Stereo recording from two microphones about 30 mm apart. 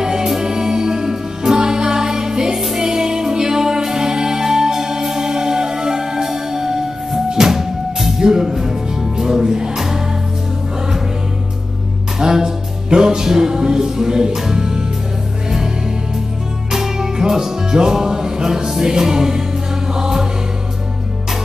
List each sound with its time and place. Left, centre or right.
0.0 s music: right
2.5 s music: centre
2.8 s music: right
12.2 s music: centre
16.7 s music: centre